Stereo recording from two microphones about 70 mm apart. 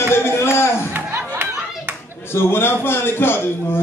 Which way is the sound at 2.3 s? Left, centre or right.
Left.